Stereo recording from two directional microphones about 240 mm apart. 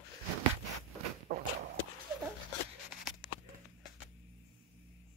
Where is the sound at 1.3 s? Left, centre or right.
Right.